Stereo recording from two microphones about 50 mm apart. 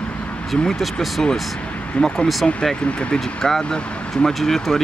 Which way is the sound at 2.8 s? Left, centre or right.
Left.